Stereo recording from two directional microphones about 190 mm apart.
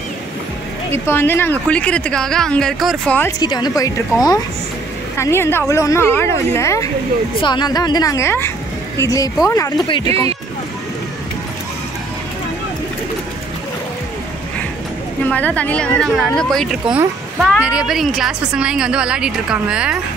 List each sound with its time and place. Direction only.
0.9 s speech: 10° left (ahead or behind)
3.2 s speech: 20° left (ahead or behind)
10.0 s speech: 30° right (ahead or behind)
15.2 s a woman's voice: 10° left (ahead or behind)